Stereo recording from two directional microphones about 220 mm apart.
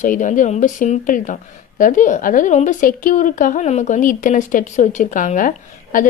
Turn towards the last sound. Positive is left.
turn(degrees=35)  # may be behind; listen again after turning